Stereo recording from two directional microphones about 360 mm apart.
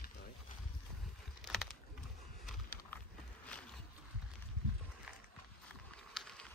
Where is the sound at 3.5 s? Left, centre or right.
Centre.